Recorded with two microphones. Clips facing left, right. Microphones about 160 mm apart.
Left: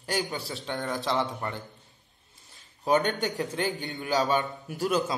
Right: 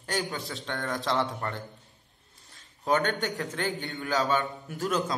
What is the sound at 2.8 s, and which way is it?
A man's voice, 15° left (ahead or behind).